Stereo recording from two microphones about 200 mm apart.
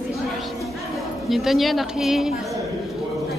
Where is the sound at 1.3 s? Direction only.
Centre (ahead or behind).